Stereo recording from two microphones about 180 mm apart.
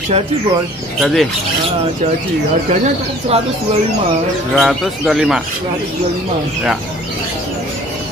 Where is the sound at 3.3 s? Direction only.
35° right (ahead or behind).